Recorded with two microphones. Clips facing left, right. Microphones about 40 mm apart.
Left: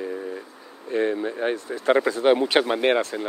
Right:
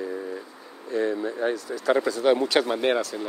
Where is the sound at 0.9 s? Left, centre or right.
Left.